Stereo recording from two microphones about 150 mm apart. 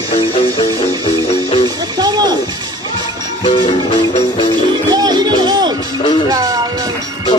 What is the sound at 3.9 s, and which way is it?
Music, 35° left (ahead or behind).